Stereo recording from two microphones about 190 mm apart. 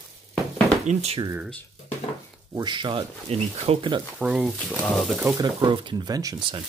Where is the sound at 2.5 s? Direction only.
25° right (ahead or behind).